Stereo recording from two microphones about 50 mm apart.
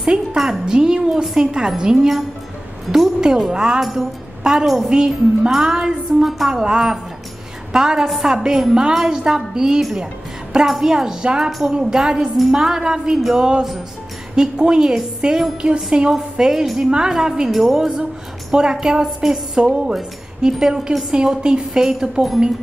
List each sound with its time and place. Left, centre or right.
0.0 s music: centre
0.4 s a woman's voice: centre
3.8 s a woman's voice: centre
4.4 s a woman's voice: centre